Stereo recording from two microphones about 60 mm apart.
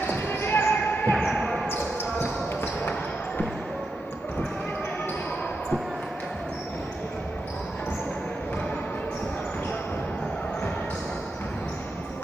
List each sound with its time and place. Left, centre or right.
0.0 s basketball bounce: left
1.1 s basketball bounce: centre